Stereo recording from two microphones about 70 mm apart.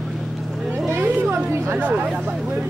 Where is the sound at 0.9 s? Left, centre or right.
Right.